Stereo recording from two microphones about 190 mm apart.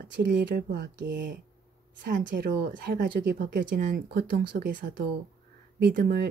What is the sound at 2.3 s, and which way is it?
A woman's voice, 55° right (ahead or behind).